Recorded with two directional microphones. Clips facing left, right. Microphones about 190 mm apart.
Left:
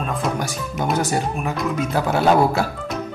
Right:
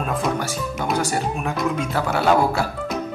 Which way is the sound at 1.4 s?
Centre (ahead or behind).